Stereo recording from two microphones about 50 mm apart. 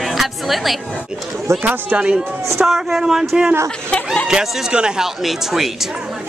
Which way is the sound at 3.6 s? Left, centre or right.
Left.